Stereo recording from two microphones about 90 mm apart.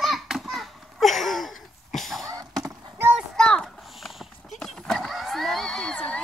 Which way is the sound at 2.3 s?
40° right (ahead or behind).